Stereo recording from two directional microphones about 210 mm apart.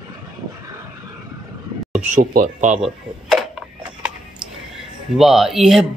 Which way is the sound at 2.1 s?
40° right (ahead or behind).